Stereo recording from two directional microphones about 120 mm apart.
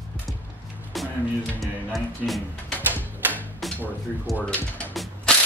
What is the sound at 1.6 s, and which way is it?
Speech, centre (ahead or behind).